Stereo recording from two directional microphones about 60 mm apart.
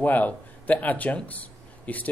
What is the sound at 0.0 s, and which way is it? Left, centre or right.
Speech, left.